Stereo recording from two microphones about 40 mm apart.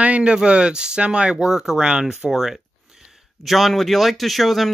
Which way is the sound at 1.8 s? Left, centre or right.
Right.